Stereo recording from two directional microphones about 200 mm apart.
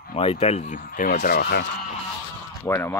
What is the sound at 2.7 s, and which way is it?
Speech, 10° left (ahead or behind).